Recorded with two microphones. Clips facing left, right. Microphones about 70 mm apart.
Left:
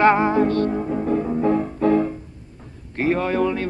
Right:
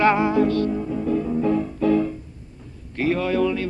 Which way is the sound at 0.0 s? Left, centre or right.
Left.